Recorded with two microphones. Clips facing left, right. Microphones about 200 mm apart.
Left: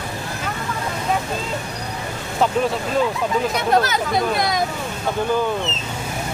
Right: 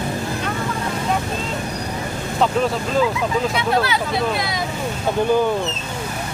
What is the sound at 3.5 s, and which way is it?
Speech, 45° left (ahead or behind).